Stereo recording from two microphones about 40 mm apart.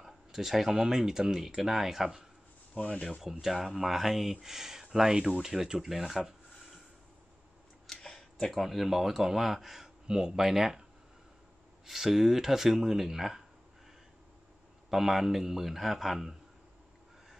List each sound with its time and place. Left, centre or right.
0.0 s speech: centre
2.8 s speech: left
3.2 s speech: centre
7.8 s tick-tock: centre
8.6 s speech: centre
10.0 s speech: centre
11.8 s speech: centre
14.9 s a man's voice: centre